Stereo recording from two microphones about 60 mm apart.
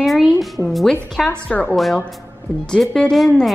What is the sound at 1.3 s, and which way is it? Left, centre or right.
A woman's voice, left.